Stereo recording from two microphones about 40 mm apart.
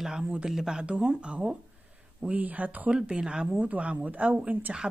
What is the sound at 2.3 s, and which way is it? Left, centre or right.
Speech, right.